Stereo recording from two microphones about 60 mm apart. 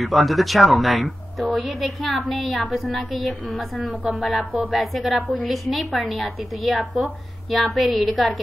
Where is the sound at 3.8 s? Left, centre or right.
Right.